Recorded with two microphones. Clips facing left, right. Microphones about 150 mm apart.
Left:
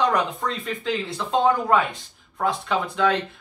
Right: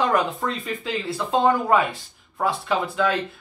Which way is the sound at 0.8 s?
5° right (ahead or behind).